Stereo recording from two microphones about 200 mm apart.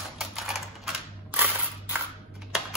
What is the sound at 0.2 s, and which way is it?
Typewriter, centre (ahead or behind).